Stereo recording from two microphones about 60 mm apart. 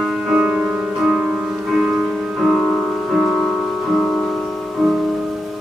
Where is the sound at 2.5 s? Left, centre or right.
Centre.